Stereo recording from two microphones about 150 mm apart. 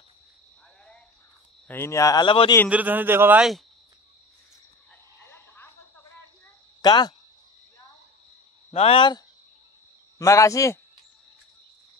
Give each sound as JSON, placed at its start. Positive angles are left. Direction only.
{"t": 1.7, "sound": "speech", "side_deg": 20}
{"t": 2.7, "sound": "a man's voice", "side_deg": -10}
{"t": 5.2, "sound": "a sound", "side_deg": 15}
{"t": 6.8, "sound": "speech", "side_deg": 30}
{"t": 8.7, "sound": "speech", "side_deg": 40}
{"t": 10.1, "sound": "speech", "side_deg": 20}